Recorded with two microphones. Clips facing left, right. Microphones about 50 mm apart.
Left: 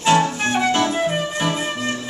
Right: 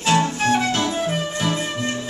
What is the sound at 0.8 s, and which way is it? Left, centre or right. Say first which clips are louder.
Music: left 3 dB; left.